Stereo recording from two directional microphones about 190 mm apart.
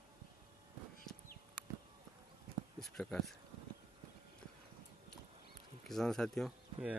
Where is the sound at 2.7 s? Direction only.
5° left (ahead or behind).